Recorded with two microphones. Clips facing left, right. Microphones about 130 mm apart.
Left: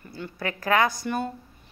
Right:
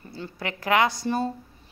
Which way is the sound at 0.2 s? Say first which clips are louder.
Left 1 dB; 20° right (ahead or behind).